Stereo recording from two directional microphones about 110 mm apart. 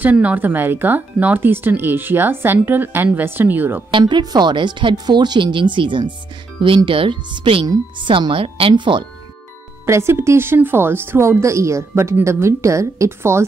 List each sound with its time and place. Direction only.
0.0 s speech: 15° right (ahead or behind)
4.0 s speech: 40° right (ahead or behind)
9.8 s a woman's voice: 25° right (ahead or behind)